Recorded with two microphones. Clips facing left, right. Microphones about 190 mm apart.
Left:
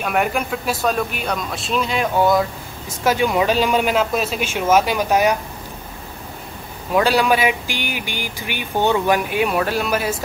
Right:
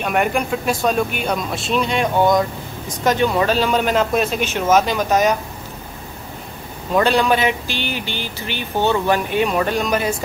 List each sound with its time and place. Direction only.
0.0 s speech: centre (ahead or behind)
6.9 s speech: 10° left (ahead or behind)